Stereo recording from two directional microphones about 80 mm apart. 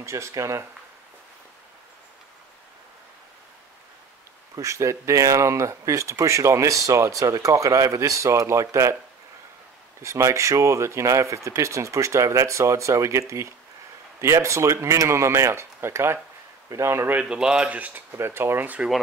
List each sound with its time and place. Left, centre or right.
0.0 s speech: right
4.6 s speech: right
10.0 s speech: right
14.2 s speech: right
17.1 s speech: centre